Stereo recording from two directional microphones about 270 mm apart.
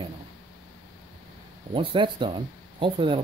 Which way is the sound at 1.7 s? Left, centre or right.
Centre.